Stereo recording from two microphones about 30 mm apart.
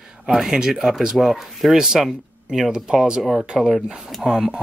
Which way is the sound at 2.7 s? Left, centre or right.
Right.